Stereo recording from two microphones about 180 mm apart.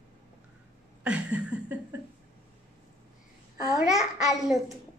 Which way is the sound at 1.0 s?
5° right (ahead or behind).